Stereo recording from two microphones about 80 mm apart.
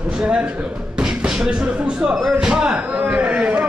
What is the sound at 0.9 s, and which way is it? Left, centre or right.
Speech, centre.